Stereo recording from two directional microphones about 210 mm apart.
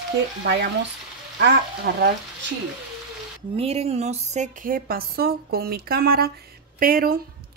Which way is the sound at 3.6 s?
30° right (ahead or behind).